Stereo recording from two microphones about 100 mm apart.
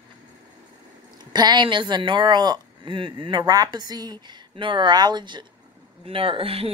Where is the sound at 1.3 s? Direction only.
45° right (ahead or behind).